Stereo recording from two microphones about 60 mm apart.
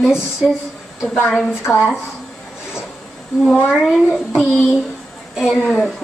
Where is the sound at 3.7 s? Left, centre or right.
Centre.